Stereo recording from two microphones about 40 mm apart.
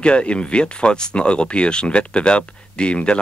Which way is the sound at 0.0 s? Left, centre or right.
Left.